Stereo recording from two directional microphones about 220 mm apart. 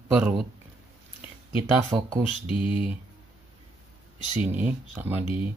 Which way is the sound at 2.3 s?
25° left (ahead or behind).